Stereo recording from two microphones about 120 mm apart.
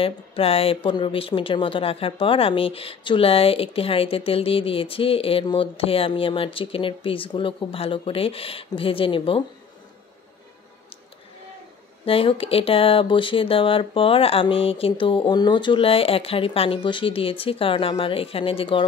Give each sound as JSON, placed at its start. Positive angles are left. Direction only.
{"t": 0.0, "sound": "speech", "side_deg": 55}
{"t": 12.0, "sound": "speech", "side_deg": 50}